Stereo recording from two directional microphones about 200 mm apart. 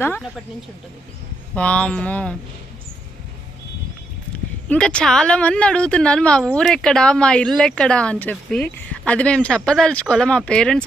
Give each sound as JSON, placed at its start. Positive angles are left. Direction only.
{"t": 1.5, "sound": "speech", "side_deg": 5}
{"t": 4.6, "sound": "a woman's voice", "side_deg": 5}